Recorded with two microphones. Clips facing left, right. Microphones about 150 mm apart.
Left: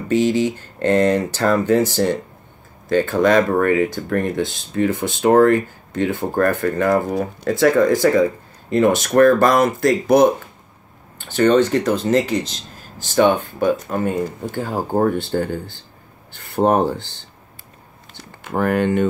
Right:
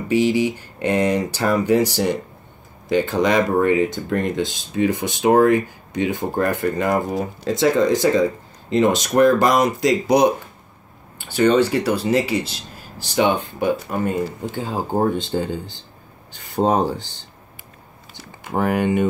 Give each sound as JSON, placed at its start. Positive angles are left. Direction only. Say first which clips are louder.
{"t": 0.1, "sound": "speech", "louder": "left 1 dB", "side_deg": -10}
{"t": 14.7, "sound": "speech", "louder": "left 1 dB", "side_deg": 15}
{"t": 15.1, "sound": "speech", "louder": "left 2 dB", "side_deg": -20}
{"t": 18.5, "sound": "speech", "louder": "left 1 dB", "side_deg": -10}